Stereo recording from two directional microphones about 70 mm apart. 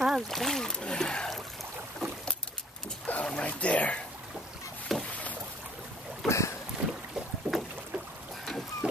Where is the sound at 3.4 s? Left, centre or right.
Centre.